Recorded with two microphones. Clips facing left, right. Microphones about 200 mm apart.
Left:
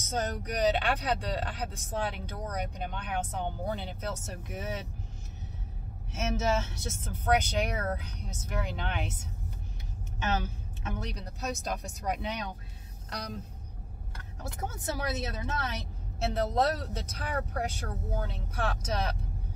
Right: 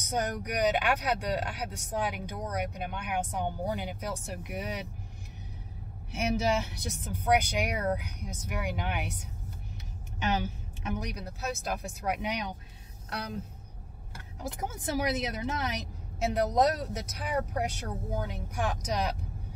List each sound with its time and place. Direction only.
0.0 s speech: 10° right (ahead or behind)
6.1 s speech: 15° right (ahead or behind)
10.2 s speech: 15° right (ahead or behind)
14.6 s speech: 15° right (ahead or behind)